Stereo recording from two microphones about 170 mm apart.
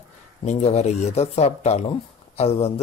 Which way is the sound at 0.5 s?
40° left (ahead or behind).